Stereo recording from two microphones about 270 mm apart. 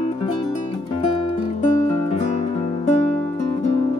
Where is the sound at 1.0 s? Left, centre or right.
Left.